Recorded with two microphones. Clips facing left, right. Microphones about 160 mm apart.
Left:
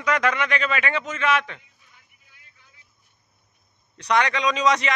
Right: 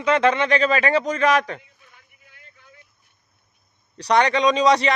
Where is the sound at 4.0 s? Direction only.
35° right (ahead or behind).